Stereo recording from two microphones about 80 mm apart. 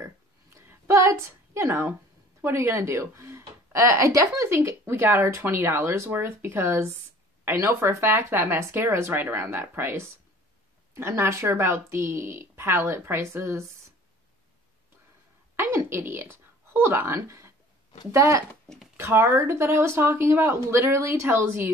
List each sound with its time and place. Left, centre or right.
0.6 s a sound: right
2.4 s speech: right
15.5 s a woman's voice: right